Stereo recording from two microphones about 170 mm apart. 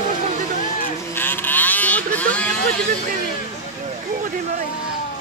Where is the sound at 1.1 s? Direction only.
10° left (ahead or behind).